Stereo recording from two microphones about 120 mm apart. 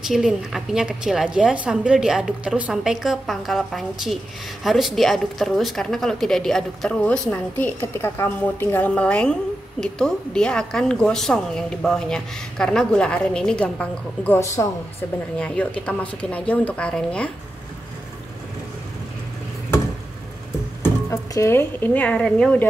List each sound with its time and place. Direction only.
0.0 s a woman's voice: 5° right (ahead or behind)
14.4 s speech: 25° left (ahead or behind)
15.3 s speech: 10° left (ahead or behind)
21.3 s speech: 25° left (ahead or behind)